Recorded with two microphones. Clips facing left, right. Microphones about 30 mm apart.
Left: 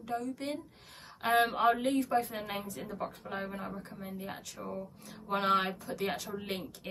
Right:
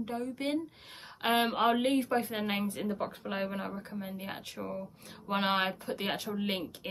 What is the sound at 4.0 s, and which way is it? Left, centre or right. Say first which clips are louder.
Speech: right 2 dB; right.